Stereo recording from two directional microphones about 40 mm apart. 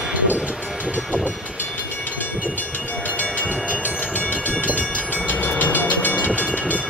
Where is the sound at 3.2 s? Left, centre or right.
Left.